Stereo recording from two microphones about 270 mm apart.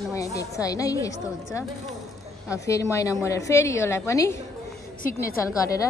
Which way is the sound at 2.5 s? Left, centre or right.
Centre.